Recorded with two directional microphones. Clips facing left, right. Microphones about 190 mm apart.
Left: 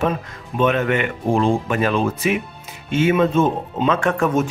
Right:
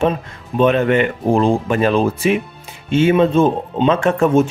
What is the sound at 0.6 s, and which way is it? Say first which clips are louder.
Speech: right 5 dB; 30° right (ahead or behind).